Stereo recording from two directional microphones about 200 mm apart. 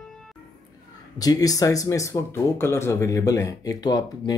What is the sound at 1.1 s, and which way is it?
Speech, 20° left (ahead or behind).